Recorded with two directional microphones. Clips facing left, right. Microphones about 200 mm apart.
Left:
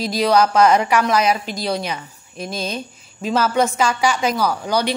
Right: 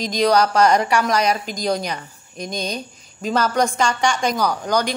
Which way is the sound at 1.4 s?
40° right (ahead or behind).